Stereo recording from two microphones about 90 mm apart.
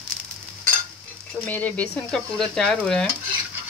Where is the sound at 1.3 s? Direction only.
20° left (ahead or behind).